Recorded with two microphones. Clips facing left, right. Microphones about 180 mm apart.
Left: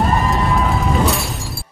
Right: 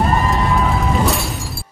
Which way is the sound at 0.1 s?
Centre (ahead or behind).